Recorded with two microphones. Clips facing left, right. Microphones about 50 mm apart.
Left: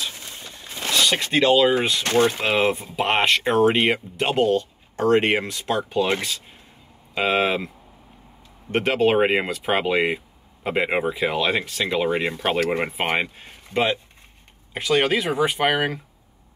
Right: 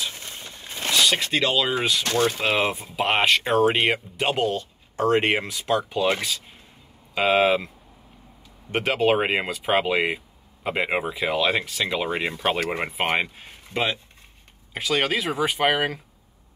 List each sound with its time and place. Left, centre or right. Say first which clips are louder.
0.0 s a sound: even; right
1.0 s speech: even; centre
1.3 s speech: left 6 dB; left
2.4 s speech: left 2 dB; centre
8.7 s speech: left 2 dB; centre